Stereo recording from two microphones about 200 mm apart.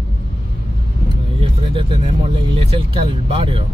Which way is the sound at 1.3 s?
25° right (ahead or behind).